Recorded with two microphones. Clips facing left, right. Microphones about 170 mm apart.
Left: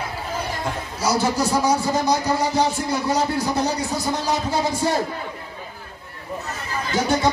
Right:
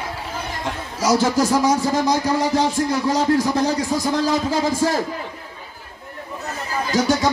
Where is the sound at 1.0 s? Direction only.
90° right.